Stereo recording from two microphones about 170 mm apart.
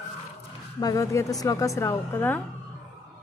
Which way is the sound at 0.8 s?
20° left (ahead or behind).